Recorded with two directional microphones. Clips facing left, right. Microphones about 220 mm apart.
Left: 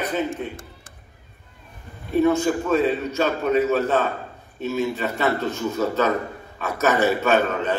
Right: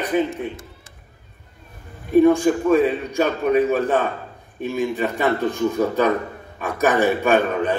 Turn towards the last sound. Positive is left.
turn(degrees=-10)  # may be behind; listen again after turning